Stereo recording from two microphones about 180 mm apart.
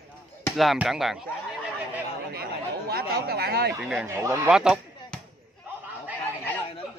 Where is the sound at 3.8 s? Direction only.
Centre (ahead or behind).